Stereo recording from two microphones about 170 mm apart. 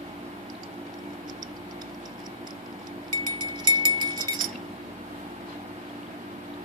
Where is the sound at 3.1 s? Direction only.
25° right (ahead or behind).